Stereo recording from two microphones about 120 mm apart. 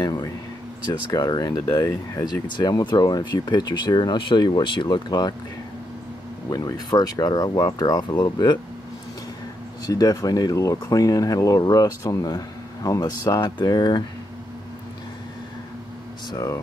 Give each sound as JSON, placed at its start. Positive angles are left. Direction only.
{"t": 0.0, "sound": "speech", "side_deg": 30}
{"t": 6.5, "sound": "speech", "side_deg": 35}
{"t": 9.8, "sound": "speech", "side_deg": 30}
{"t": 16.3, "sound": "speech", "side_deg": 30}